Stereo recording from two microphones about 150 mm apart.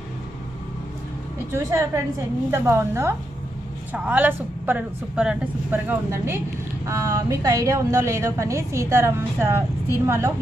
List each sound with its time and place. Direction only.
1.5 s a woman's voice: 20° right (ahead or behind)